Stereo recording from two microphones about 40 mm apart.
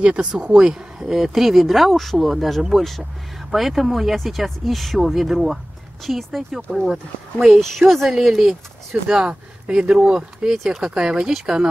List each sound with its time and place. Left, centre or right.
0.0 s speech: right
0.7 s speech: centre
7.5 s speech: centre
9.1 s speech: centre
10.6 s speech: centre
11.0 s speech: centre